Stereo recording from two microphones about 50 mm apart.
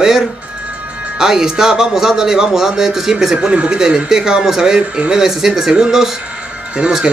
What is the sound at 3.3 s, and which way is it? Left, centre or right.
A man's voice, right.